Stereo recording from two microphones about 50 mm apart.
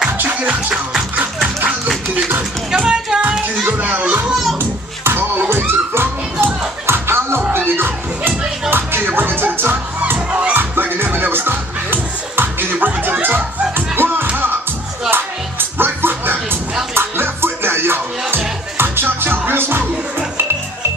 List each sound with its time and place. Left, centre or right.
0.2 s music: right
2.7 s music: centre
3.6 s children playing: right
4.6 s music: right
15.8 s a sound: right
16.9 s music: right